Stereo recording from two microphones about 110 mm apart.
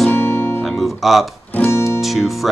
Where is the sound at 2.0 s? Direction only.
Centre (ahead or behind).